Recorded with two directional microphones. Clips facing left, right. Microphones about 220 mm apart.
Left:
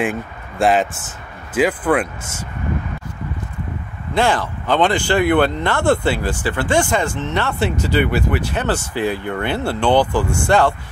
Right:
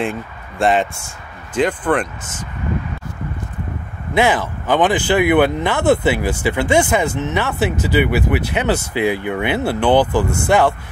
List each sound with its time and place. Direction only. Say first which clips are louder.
0.0 s speech: left 1 dB; centre (ahead or behind)
4.4 s speech: right 1 dB; 15° right (ahead or behind)